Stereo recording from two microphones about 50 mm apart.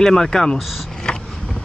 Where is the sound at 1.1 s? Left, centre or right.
Centre.